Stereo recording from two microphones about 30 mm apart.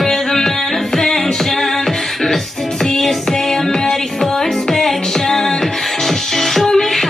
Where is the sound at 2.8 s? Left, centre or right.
Centre.